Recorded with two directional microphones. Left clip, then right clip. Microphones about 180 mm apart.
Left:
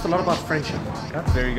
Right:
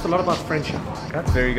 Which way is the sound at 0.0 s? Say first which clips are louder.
Right 1 dB; centre (ahead or behind).